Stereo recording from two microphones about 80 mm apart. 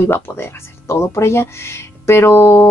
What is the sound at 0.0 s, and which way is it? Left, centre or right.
Speech, left.